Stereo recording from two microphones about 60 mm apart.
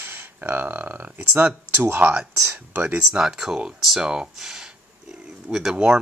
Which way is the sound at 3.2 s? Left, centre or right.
Centre.